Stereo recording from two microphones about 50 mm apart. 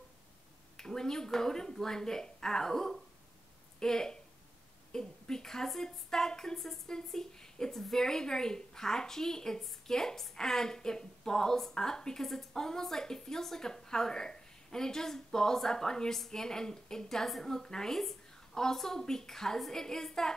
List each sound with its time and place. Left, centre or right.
0.7 s a woman's voice: centre